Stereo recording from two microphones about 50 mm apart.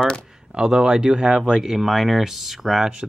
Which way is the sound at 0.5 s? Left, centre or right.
Centre.